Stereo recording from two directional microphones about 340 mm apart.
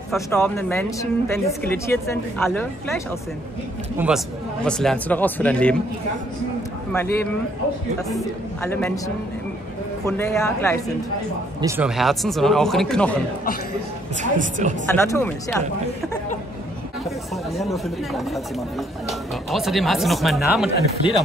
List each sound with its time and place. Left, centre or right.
0.1 s speech: centre
4.0 s speech: centre
6.9 s speech: centre
11.6 s speech: centre
14.2 s a woman's voice: right
14.9 s speech: centre
17.6 s speech: centre